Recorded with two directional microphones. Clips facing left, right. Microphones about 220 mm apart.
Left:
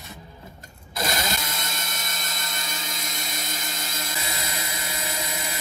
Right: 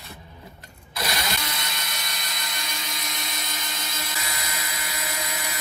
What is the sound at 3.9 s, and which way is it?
Dental drill, 45° left (ahead or behind).